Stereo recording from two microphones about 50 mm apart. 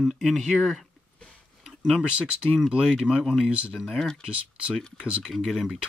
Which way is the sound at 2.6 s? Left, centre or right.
Centre.